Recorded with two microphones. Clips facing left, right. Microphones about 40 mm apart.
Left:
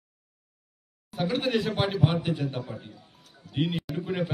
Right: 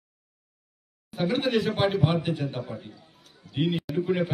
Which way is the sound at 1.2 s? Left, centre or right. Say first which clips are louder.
Right 2 dB; right.